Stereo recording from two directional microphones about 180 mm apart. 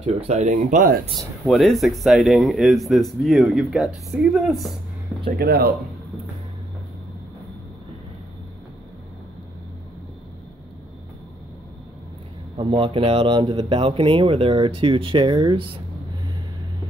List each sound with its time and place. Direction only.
0.0 s speech: 40° right (ahead or behind)
1.4 s speech: centre (ahead or behind)
5.4 s speech: 60° right (ahead or behind)
12.5 s speech: 30° right (ahead or behind)